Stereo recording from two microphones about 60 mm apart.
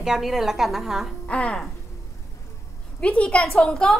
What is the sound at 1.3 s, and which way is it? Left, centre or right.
Speech, centre.